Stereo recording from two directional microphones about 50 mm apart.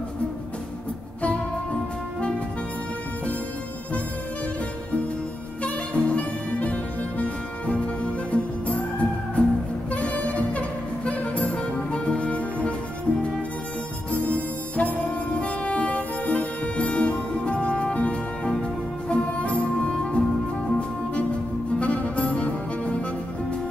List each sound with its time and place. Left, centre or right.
1.2 s music: left
5.6 s music: left
14.1 s music: left